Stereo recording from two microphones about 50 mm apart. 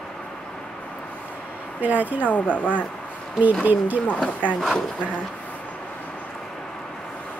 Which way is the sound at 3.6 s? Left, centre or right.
Right.